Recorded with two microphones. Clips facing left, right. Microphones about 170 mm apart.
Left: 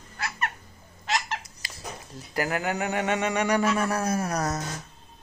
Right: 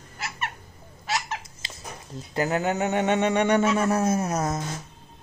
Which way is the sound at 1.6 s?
25° right (ahead or behind).